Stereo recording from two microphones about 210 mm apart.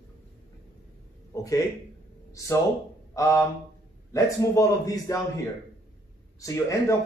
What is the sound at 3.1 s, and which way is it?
Speech, 15° left (ahead or behind).